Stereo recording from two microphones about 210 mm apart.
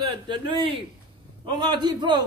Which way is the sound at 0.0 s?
20° right (ahead or behind).